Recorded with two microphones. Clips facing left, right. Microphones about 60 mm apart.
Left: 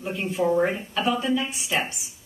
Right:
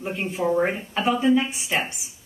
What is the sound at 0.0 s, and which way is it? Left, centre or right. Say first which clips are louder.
Speech: left 1 dB; centre.